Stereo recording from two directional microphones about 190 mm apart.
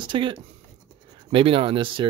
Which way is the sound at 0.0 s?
25° right (ahead or behind).